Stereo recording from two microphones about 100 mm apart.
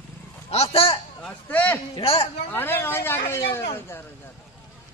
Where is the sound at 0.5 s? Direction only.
85° left.